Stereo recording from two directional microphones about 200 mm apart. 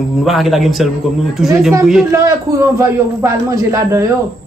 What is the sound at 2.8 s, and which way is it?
Speech, 15° right (ahead or behind).